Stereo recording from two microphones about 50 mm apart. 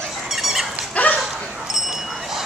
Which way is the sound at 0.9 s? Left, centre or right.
Left.